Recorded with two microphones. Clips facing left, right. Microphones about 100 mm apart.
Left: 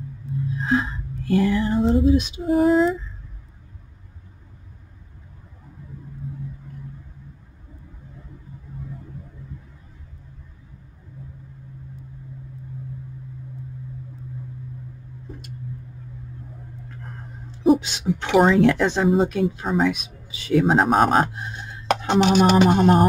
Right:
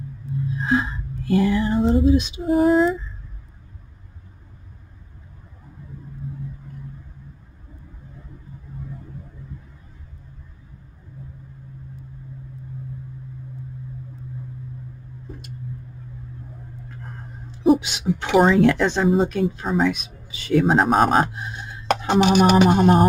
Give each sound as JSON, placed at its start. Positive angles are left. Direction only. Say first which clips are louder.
{"t": 0.6, "sound": "a sound", "louder": "right 1 dB", "side_deg": -5}
{"t": 2.0, "sound": "female singing", "louder": "even", "side_deg": -20}
{"t": 2.4, "sound": "speech", "louder": "right 1 dB", "side_deg": 0}
{"t": 17.7, "sound": "speech", "louder": "right 1 dB", "side_deg": -10}
{"t": 18.4, "sound": "speech", "louder": "even", "side_deg": 0}